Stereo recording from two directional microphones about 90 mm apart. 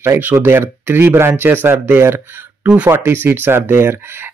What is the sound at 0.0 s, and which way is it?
Speech, 25° right (ahead or behind).